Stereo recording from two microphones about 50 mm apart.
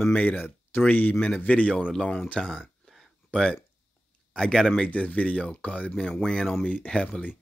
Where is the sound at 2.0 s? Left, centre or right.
Left.